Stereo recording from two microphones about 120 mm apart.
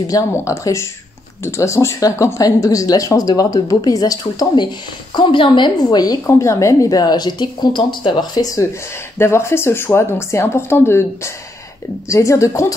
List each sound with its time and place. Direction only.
0.1 s speech: 25° left (ahead or behind)
5.1 s a woman's voice: 45° left (ahead or behind); by 12.7 s 25° left (ahead or behind)